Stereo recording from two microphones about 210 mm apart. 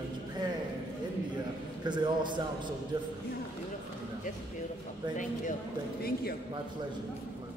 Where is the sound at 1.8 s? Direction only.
20° right (ahead or behind).